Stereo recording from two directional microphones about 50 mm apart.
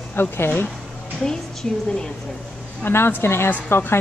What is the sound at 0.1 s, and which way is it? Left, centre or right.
Speech, left.